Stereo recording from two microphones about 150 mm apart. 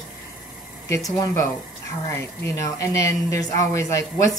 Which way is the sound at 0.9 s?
20° left (ahead or behind).